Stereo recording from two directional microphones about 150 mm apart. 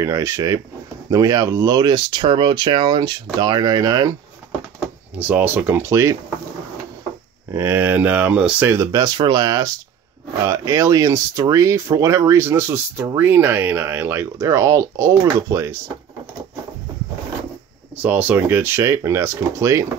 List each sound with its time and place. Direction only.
0.0 s speech: 20° right (ahead or behind)
5.1 s speech: 10° right (ahead or behind)
7.5 s speech: 15° right (ahead or behind)
17.9 s speech: 10° right (ahead or behind)